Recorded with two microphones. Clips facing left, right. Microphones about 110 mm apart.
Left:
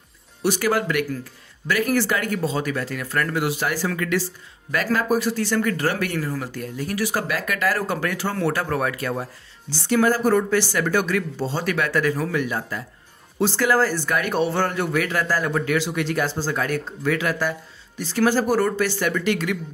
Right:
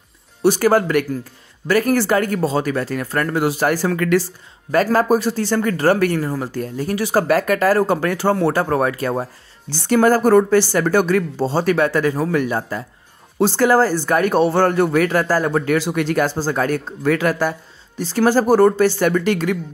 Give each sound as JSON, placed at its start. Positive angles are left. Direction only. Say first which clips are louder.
{"t": 0.4, "sound": "speech", "louder": "right 7 dB", "side_deg": -35}
{"t": 7.2, "sound": "speech", "louder": "right 8 dB", "side_deg": -40}
{"t": 12.3, "sound": "a man's voice", "louder": "right 5 dB", "side_deg": -45}